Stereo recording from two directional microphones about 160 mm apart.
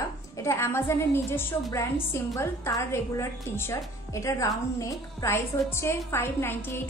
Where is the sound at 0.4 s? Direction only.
15° left (ahead or behind).